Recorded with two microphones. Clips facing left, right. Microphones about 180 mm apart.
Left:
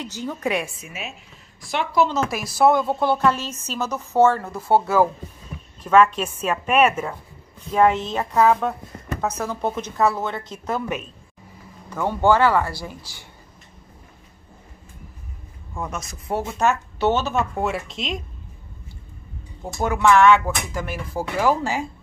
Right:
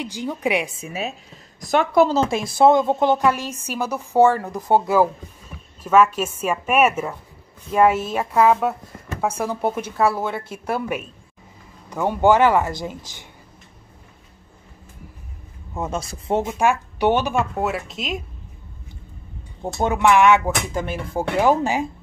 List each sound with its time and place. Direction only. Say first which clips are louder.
0.0 s speech: right 2 dB; 15° right (ahead or behind)
0.7 s a woman's voice: right 7 dB; 35° right (ahead or behind)
2.1 s speech: right 3 dB; 25° right (ahead or behind)
15.7 s speech: right 4 dB; 25° right (ahead or behind); by 18.2 s centre (ahead or behind)
19.6 s speech: right 1 dB; 25° right (ahead or behind)